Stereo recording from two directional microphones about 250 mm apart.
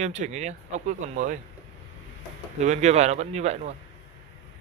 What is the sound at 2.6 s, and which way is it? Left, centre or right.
Speech, right.